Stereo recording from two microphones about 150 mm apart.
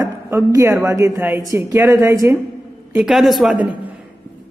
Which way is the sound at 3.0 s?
5° right (ahead or behind).